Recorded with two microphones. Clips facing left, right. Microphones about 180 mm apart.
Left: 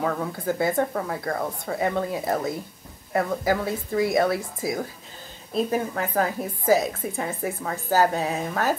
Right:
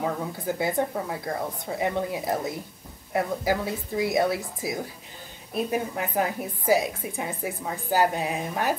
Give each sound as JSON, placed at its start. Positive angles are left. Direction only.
{"t": 0.0, "sound": "speech", "side_deg": -15}
{"t": 5.9, "sound": "speech", "side_deg": -15}